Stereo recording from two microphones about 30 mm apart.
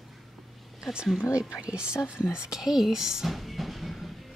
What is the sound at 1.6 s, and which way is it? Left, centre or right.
Speech, right.